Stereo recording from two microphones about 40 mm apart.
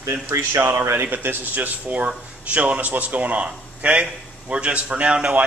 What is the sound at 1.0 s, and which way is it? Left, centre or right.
Speech, right.